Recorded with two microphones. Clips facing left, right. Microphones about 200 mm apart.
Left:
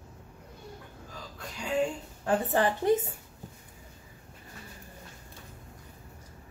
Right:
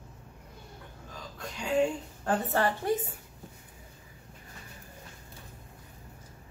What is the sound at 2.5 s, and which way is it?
Speech, 15° left (ahead or behind).